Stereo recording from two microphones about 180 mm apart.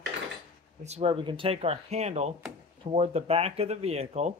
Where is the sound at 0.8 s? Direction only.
35° right (ahead or behind).